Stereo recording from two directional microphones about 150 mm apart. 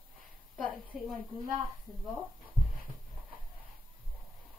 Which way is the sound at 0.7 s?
Centre (ahead or behind).